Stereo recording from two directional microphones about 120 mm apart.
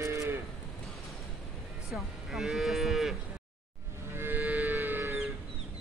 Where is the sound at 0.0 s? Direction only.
25° right (ahead or behind).